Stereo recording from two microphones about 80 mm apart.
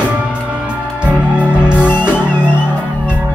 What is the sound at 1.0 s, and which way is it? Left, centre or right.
Music, centre.